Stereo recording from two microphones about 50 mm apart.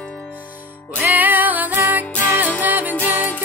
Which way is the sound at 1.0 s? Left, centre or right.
Right.